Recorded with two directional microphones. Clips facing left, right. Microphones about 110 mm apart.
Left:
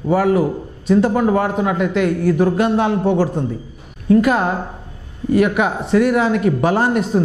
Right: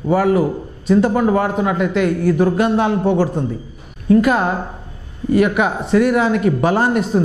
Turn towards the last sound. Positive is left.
turn(degrees=-15)  # may be behind; listen again after turning